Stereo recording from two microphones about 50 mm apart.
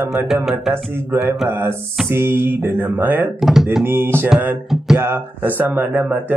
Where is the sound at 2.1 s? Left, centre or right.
Right.